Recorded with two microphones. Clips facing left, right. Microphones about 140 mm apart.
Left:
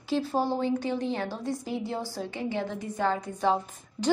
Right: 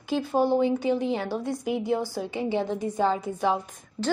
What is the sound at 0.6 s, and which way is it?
A woman's voice, 10° right (ahead or behind).